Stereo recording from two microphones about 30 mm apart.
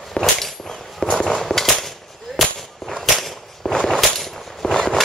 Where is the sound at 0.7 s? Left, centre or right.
Left.